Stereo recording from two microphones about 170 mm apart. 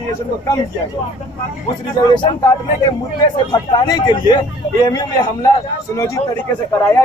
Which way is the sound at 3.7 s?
25° left (ahead or behind).